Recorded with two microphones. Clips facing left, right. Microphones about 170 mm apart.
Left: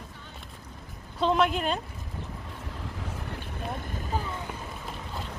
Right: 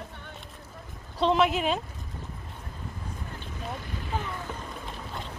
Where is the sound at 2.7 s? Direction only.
85° left.